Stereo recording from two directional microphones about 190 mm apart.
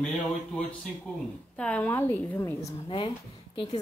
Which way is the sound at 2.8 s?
25° left (ahead or behind).